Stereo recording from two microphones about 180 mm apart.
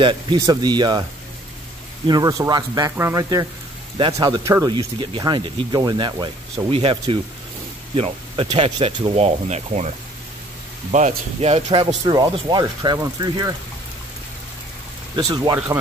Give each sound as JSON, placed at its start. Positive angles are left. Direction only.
{"t": 0.0, "sound": "speech", "side_deg": -20}
{"t": 2.0, "sound": "speech", "side_deg": -20}
{"t": 15.1, "sound": "speech", "side_deg": -20}